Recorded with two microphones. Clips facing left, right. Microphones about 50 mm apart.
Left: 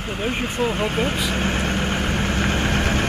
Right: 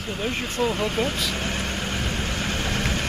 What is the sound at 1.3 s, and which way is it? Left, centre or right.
Vehicle, left.